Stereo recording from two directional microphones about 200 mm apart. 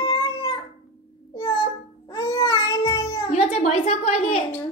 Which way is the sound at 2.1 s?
20° left (ahead or behind).